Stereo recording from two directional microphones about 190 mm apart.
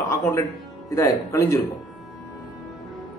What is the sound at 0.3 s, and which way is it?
Speech, 15° left (ahead or behind).